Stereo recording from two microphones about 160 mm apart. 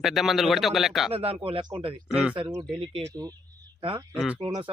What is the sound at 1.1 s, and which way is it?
Speech, 35° right (ahead or behind).